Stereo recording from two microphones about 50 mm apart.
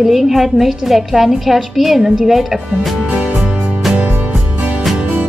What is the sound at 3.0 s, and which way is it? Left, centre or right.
Music, right.